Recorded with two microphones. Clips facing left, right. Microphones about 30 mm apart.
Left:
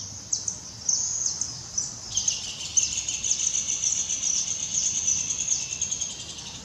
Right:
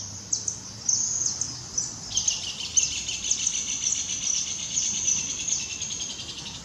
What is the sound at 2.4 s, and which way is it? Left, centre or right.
Bird, right.